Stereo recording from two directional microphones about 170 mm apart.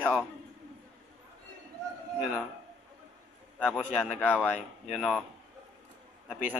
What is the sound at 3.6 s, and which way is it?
Speech, centre (ahead or behind).